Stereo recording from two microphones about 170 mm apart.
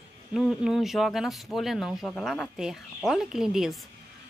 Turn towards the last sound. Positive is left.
turn(degrees=-5)  # may be behind; listen again after turning